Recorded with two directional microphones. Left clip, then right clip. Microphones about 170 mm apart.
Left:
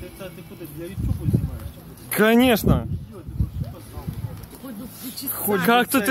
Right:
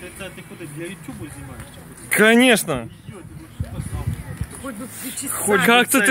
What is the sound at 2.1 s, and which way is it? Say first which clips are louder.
Speech: right 4 dB; 5° left (ahead or behind).